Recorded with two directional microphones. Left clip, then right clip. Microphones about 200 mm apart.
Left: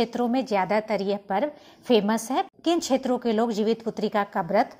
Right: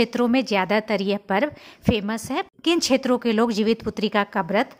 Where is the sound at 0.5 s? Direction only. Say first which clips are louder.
Right 2 dB; 40° right (ahead or behind).